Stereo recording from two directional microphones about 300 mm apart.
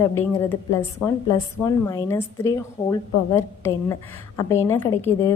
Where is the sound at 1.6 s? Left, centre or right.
Centre.